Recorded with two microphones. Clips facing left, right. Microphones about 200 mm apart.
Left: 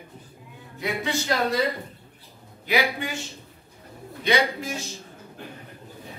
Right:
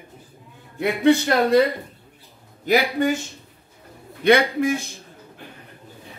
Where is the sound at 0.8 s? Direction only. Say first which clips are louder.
Right 11 dB; 60° right (ahead or behind).